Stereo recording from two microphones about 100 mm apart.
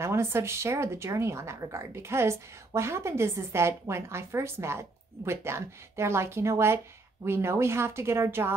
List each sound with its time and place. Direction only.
0.0 s speech: 25° right (ahead or behind)